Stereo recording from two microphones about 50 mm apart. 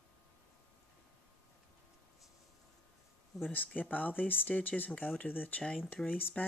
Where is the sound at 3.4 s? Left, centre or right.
Left.